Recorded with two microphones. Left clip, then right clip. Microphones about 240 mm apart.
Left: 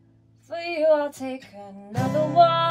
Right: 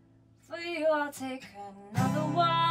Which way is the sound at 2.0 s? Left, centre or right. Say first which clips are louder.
Left 10 dB; centre.